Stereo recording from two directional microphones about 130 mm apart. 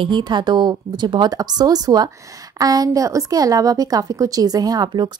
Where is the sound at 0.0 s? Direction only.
35° right (ahead or behind).